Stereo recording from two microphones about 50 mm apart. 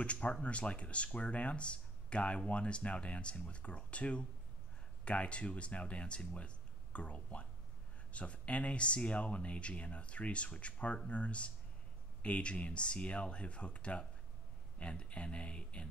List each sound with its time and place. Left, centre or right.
0.0 s speech: left